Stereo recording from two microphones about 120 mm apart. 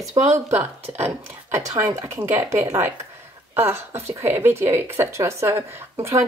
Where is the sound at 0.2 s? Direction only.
75° right (ahead or behind).